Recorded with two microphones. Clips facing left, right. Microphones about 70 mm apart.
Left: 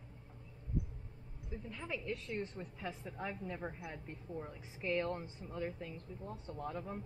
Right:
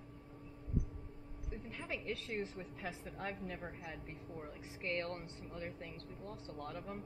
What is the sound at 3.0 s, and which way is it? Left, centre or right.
A woman's voice, centre.